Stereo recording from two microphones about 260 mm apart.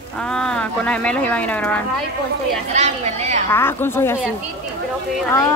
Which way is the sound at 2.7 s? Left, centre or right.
Right.